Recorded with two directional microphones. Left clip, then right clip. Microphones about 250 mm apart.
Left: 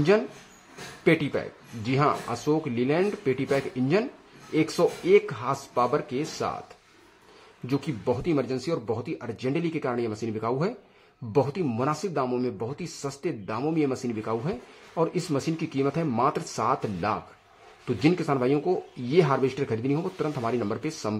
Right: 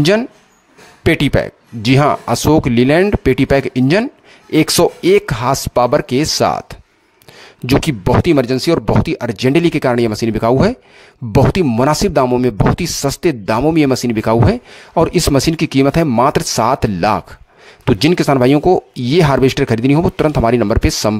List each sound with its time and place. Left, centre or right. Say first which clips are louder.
1.0 s speech: right 10 dB; right